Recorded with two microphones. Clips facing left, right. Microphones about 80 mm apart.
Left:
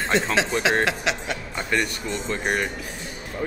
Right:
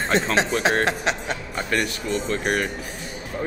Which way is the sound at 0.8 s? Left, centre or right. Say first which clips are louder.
Right 1 dB; right.